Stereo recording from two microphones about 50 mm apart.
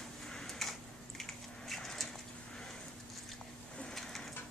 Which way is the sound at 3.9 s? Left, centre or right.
Centre.